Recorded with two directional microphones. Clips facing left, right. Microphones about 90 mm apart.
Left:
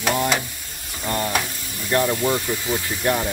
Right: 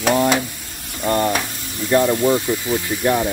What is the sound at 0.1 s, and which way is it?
Speech, 25° right (ahead or behind).